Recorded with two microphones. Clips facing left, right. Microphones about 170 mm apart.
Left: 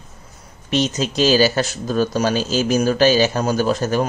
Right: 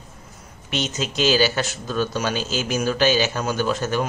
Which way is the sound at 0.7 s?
35° left (ahead or behind).